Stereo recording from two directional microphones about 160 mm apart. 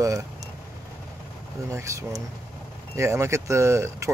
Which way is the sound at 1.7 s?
20° right (ahead or behind).